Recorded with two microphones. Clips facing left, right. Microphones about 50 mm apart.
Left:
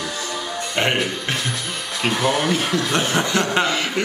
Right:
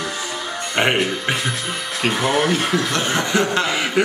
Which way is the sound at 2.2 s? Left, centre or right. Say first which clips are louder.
Right 1 dB; centre.